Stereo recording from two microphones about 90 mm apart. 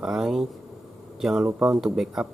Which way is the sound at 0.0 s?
5° right (ahead or behind).